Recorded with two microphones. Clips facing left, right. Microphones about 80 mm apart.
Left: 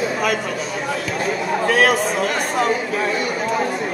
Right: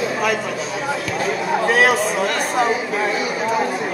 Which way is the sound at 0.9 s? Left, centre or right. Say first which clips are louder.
Right 1 dB; centre.